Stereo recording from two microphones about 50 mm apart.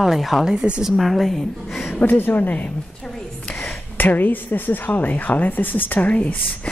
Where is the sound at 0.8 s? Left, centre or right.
Centre.